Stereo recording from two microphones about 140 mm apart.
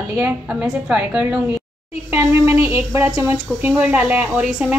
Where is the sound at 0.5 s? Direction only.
5° right (ahead or behind).